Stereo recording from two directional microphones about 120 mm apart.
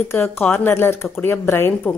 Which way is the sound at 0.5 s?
20° left (ahead or behind).